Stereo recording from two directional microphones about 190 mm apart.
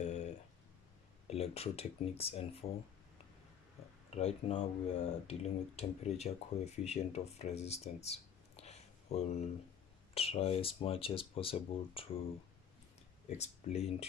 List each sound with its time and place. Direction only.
0.0 s a sound: 35° left (ahead or behind)
1.2 s speech: 35° left (ahead or behind)
4.1 s speech: 35° left (ahead or behind)
13.3 s speech: 35° left (ahead or behind)